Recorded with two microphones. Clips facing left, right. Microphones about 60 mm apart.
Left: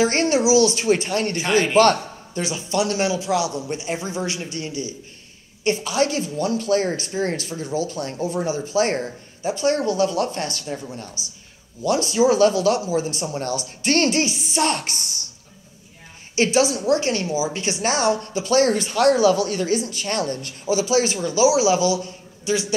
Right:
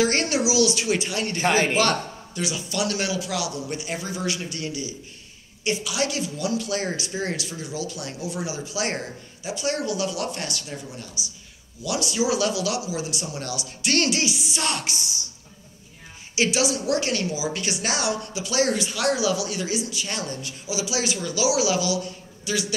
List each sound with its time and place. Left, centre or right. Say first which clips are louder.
0.0 s a woman's voice: left 4 dB; left
16.3 s a woman's voice: left 4 dB; left